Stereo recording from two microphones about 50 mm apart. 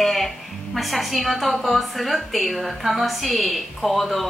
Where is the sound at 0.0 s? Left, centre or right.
Centre.